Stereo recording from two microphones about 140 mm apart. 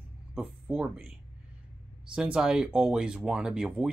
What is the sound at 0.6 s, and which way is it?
Speech, 10° right (ahead or behind).